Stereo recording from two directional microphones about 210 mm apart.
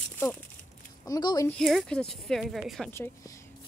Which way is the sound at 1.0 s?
20° left (ahead or behind).